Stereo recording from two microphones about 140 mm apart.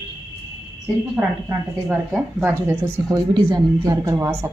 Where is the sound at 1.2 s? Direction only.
15° right (ahead or behind).